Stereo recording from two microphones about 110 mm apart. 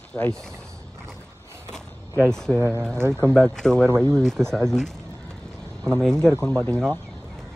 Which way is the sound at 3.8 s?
25° right (ahead or behind).